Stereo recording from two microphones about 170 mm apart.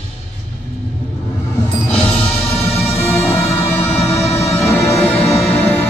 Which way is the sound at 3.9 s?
40° left (ahead or behind).